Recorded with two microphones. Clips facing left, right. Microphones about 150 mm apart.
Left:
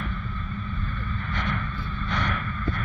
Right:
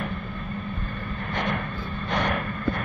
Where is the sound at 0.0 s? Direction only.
55° right (ahead or behind).